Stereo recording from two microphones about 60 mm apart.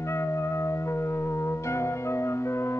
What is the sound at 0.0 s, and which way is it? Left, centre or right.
Music, left.